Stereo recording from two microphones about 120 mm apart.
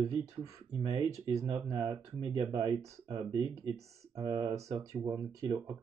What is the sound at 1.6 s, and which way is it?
Speech, 35° right (ahead or behind).